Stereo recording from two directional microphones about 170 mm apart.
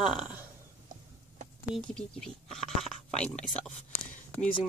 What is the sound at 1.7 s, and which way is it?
Speech, 5° left (ahead or behind).